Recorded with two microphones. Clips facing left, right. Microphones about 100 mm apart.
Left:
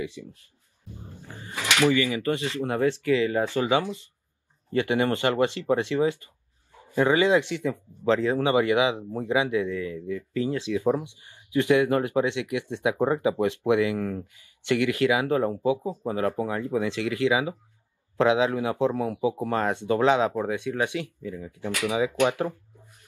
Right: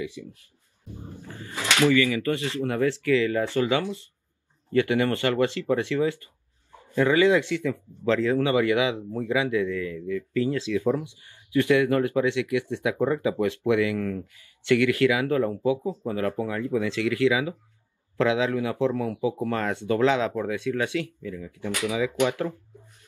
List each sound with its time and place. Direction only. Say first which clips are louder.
0.2 s speech: right 1 dB; 45° left (ahead or behind)
1.3 s speech: even; 20° left (ahead or behind)